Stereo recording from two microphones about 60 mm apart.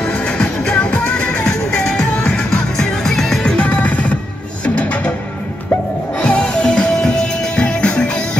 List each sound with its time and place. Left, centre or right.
0.0 s music: centre
3.5 s music: left
6.1 s music: centre